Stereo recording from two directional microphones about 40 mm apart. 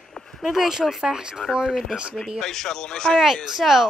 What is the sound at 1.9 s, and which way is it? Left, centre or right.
Speech, right.